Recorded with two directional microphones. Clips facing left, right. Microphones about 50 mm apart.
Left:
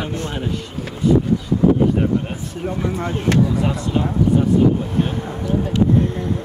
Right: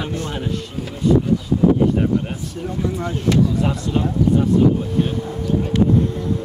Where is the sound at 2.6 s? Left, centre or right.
Left.